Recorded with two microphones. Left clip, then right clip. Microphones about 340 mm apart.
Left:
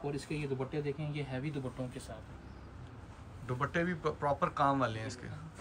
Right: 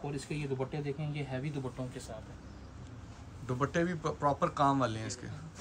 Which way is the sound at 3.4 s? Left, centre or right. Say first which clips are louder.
Right 2 dB; centre.